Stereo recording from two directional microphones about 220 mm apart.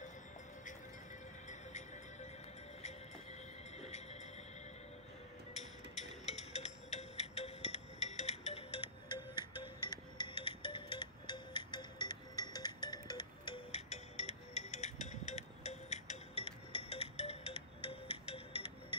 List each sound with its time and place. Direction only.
3.8 s music: 30° left (ahead or behind)
5.5 s a sound: 30° left (ahead or behind)
6.2 s music: 30° left (ahead or behind)
10.1 s music: 25° left (ahead or behind)